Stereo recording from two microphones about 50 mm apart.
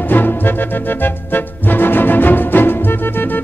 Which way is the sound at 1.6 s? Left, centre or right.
Left.